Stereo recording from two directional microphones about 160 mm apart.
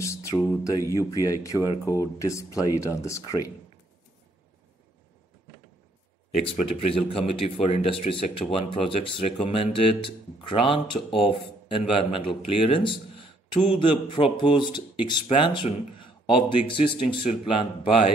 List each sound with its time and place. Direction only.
0.0 s speech: 20° left (ahead or behind)
6.4 s speech: 35° left (ahead or behind)